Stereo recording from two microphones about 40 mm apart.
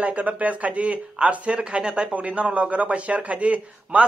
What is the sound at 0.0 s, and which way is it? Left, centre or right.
A man's voice, right.